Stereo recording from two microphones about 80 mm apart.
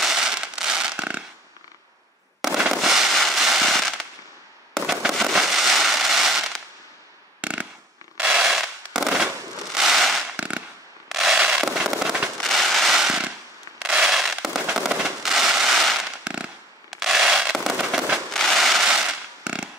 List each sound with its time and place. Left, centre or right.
0.0 s fireworks: centre
2.7 s fireworks: centre
5.1 s fireworks: centre
7.4 s fireworks: centre
8.2 s a sound: centre
9.8 s fireworks: centre
10.3 s firecracker: centre
11.1 s fireworks: centre
18.3 s a sound: centre